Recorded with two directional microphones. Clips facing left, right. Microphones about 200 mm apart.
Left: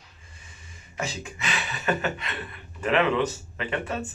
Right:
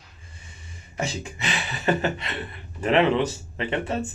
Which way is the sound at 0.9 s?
30° right (ahead or behind).